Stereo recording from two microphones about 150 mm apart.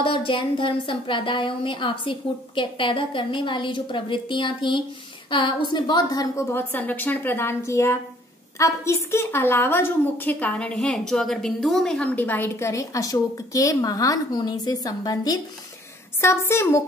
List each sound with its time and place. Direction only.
0.0 s a woman's voice: 35° left (ahead or behind); by 16.8 s 20° left (ahead or behind)